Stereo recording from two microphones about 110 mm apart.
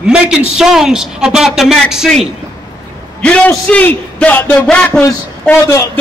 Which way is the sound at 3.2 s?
10° left (ahead or behind).